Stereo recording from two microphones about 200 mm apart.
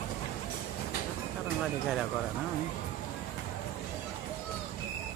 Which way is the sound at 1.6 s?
Centre (ahead or behind).